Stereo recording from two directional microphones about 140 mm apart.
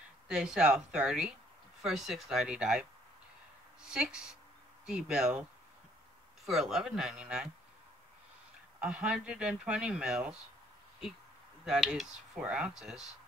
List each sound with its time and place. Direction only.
0.3 s speech: 5° right (ahead or behind)
6.4 s speech: centre (ahead or behind)
8.7 s speech: 5° right (ahead or behind)
11.6 s speech: 5° right (ahead or behind)